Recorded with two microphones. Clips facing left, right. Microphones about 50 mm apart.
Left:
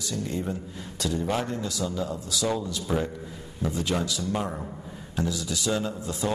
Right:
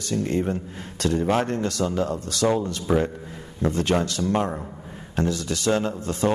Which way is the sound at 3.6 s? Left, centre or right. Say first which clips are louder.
Right 5 dB; right.